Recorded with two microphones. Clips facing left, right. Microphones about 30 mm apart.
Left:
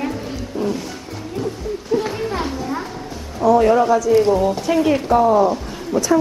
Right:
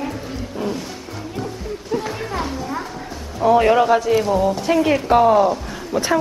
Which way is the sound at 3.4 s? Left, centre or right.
Right.